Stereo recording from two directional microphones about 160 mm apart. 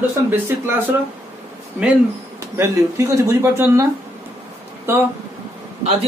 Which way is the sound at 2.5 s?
20° right (ahead or behind).